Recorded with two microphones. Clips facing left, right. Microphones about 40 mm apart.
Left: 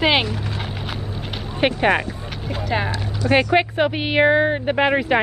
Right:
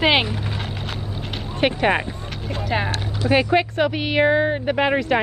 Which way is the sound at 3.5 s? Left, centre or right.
Centre.